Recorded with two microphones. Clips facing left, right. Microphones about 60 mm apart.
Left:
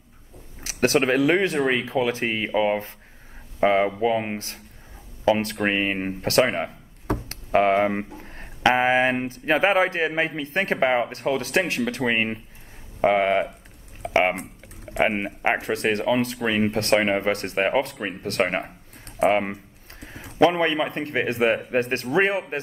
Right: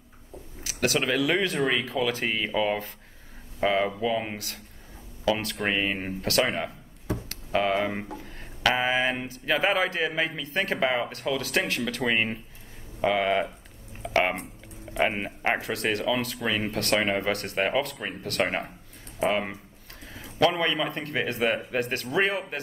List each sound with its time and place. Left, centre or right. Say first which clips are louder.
0.7 s speech: left 6 dB; left
15.0 s speech: left 4 dB; left
15.6 s speech: left 4 dB; left
19.2 s speech: left 6 dB; left
20.1 s a sound: left 2 dB; left
20.3 s speech: left 5 dB; left